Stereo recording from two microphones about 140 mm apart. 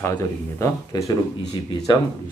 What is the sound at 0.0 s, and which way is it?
Speech, 20° left (ahead or behind).